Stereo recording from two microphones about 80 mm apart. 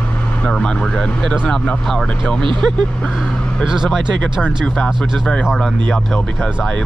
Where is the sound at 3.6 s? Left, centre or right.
Centre.